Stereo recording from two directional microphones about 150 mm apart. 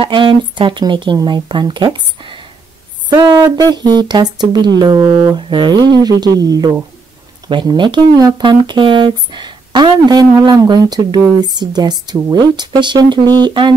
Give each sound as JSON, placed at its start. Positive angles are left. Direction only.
{"t": 0.0, "sound": "speech", "side_deg": -35}